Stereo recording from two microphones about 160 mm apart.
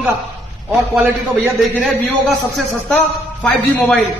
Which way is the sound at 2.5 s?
5° left (ahead or behind).